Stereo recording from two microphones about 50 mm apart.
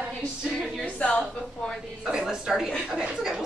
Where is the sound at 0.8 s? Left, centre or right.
Left.